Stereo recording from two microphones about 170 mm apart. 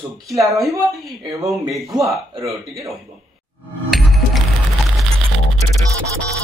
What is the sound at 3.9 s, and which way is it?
Music, centre (ahead or behind).